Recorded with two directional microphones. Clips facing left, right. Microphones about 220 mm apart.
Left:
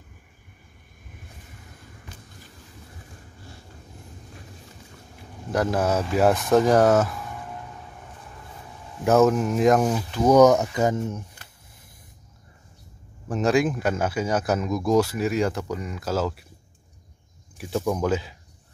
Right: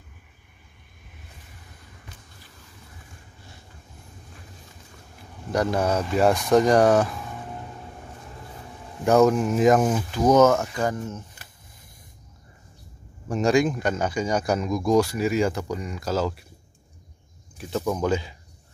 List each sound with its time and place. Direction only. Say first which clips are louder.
5.5 s speech: even; 5° left (ahead or behind)
9.0 s speech: even; centre (ahead or behind)
10.2 s speech: left 2 dB; 15° left (ahead or behind)
13.3 s speech: right 1 dB; centre (ahead or behind)
17.6 s speech: left 1 dB; 10° left (ahead or behind)